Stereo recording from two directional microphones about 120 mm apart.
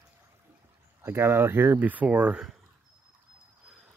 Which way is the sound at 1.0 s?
20° right (ahead or behind).